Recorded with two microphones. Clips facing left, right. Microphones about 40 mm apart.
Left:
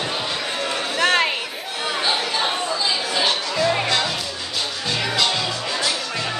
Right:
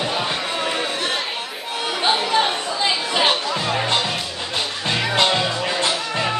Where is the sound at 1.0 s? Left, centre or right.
Left.